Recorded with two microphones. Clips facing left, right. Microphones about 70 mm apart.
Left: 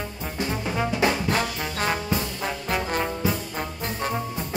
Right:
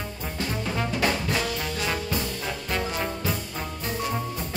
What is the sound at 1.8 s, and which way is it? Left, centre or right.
Trombone, left.